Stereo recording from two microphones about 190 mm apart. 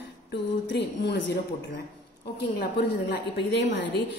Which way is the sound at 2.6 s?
55° left (ahead or behind).